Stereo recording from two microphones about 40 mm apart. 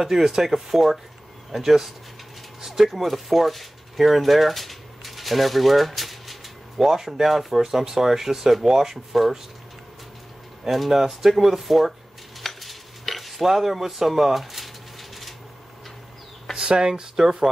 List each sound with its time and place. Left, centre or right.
0.0 s speech: centre
10.7 s speech: centre
12.4 s cutlery: centre
16.5 s speech: right